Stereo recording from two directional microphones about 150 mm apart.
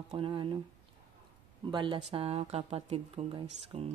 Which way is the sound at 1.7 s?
30° right (ahead or behind).